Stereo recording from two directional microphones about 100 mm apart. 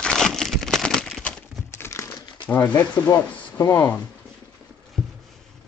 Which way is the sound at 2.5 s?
20° left (ahead or behind).